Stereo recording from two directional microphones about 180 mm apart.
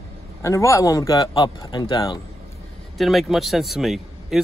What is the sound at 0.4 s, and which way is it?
A man's voice, 15° left (ahead or behind).